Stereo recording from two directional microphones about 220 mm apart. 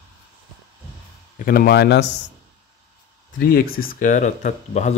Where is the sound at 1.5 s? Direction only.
45° left (ahead or behind).